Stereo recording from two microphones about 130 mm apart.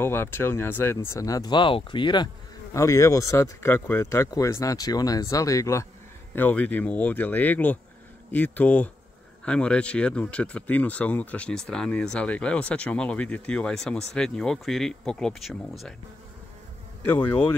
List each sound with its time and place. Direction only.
0.0 s speech: 15° left (ahead or behind); by 2.2 s 35° left (ahead or behind)
2.7 s speech: 25° left (ahead or behind)
6.3 s speech: 15° left (ahead or behind)
17.0 s speech: 10° left (ahead or behind)